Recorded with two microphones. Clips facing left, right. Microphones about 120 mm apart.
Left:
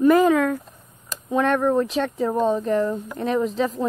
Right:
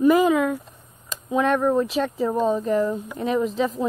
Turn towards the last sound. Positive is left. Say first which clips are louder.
# even
turn(degrees=0)  # may be behind; listen again after turning